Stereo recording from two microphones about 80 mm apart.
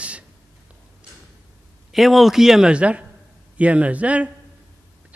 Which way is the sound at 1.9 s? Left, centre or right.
Centre.